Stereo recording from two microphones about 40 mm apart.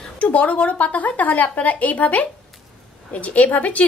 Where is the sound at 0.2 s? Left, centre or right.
Left.